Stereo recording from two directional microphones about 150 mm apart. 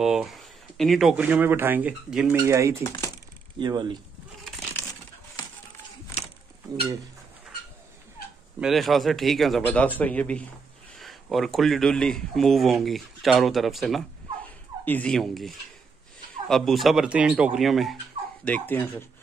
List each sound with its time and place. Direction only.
0.0 s speech: 5° right (ahead or behind)
1.2 s speech: 15° right (ahead or behind)
2.3 s speech: 20° right (ahead or behind)
2.8 s speech: 20° left (ahead or behind)
3.5 s speech: 30° right (ahead or behind)
8.5 s speech: centre (ahead or behind)
18.4 s speech: 10° left (ahead or behind)